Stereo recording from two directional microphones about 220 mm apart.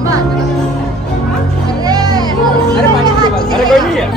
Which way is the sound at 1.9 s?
15° right (ahead or behind).